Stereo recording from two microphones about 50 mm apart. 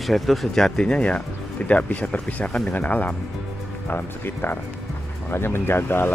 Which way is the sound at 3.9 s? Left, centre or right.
Left.